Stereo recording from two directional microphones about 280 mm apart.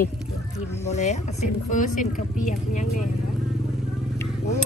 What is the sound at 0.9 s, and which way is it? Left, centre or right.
A woman's voice, left.